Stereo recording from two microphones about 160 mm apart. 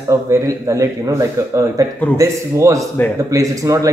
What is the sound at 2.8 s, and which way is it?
Speech, 5° left (ahead or behind).